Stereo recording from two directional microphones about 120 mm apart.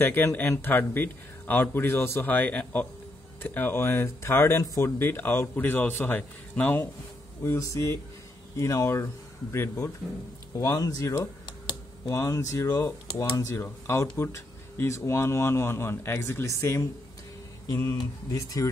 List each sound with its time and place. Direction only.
0.0 s speech: 20° left (ahead or behind)
7.4 s speech: 25° left (ahead or behind)
17.6 s a sound: 20° left (ahead or behind)
18.3 s speech: 25° left (ahead or behind)